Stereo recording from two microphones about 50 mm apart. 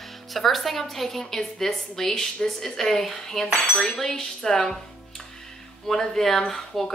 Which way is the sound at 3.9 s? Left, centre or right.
Centre.